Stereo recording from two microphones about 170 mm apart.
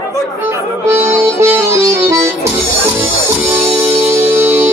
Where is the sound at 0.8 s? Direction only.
15° right (ahead or behind).